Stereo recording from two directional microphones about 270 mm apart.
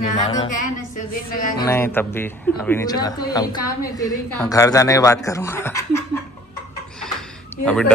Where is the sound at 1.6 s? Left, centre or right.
Centre.